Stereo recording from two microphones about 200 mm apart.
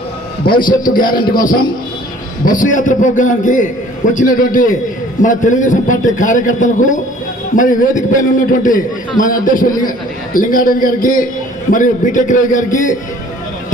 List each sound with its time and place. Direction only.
0.5 s a man's voice: 45° left (ahead or behind)
1.0 s music: 20° left (ahead or behind)
1.3 s a man's voice: 45° left (ahead or behind)